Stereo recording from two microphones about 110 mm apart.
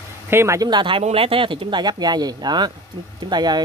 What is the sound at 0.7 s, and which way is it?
Speech, 45° right (ahead or behind).